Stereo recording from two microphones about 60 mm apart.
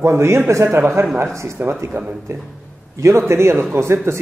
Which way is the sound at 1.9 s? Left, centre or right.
Right.